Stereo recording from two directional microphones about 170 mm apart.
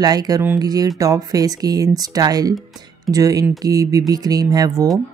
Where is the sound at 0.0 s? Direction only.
20° right (ahead or behind).